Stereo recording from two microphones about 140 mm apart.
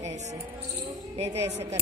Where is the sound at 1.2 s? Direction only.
50° right (ahead or behind).